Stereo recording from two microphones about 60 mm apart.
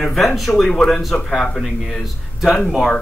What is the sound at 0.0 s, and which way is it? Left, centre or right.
Speech, centre.